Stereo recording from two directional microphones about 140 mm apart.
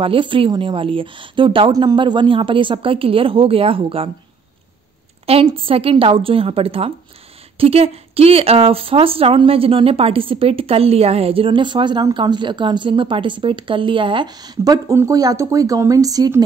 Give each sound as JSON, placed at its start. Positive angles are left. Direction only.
{"t": 0.0, "sound": "speech", "side_deg": -40}
{"t": 5.2, "sound": "a woman's voice", "side_deg": -40}